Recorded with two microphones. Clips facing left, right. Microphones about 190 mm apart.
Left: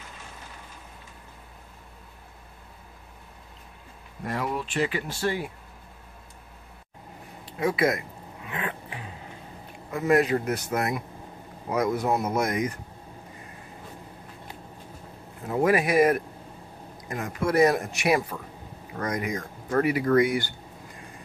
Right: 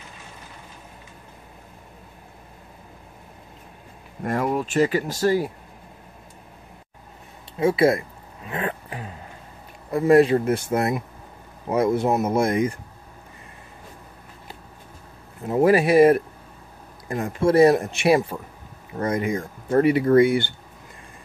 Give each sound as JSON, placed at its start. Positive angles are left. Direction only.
{"t": 4.2, "sound": "speech", "side_deg": -50}
{"t": 7.5, "sound": "speech", "side_deg": -30}
{"t": 8.5, "sound": "a sound", "side_deg": -40}
{"t": 9.8, "sound": "speech", "side_deg": -35}
{"t": 15.4, "sound": "speech", "side_deg": -30}